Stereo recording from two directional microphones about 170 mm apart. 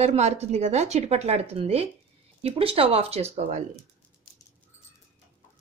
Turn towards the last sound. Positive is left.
turn(degrees=-40)  # may be behind; listen again after turning